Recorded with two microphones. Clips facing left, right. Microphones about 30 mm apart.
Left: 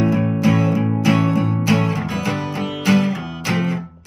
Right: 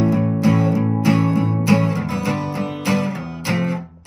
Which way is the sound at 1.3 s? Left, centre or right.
Left.